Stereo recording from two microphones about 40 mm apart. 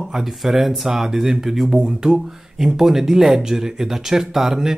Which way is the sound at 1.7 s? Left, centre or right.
Right.